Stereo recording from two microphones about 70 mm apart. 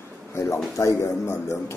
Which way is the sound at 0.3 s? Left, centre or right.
Left.